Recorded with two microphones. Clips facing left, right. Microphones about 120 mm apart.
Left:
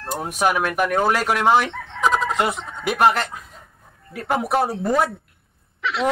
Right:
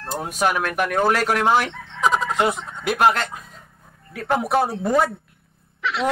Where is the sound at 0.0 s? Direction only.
Centre (ahead or behind).